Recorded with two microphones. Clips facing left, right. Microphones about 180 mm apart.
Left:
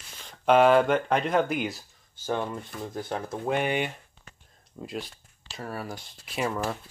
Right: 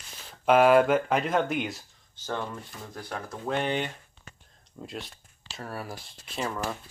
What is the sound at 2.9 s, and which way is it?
Speech, 25° left (ahead or behind).